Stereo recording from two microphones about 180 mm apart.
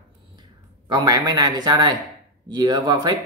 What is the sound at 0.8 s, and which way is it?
Speech, 25° right (ahead or behind).